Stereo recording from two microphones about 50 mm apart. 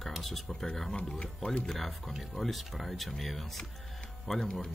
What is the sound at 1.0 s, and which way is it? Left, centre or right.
Speech, left.